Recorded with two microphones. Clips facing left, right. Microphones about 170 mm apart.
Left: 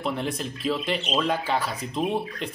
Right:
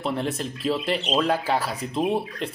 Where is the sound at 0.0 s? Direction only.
Centre (ahead or behind).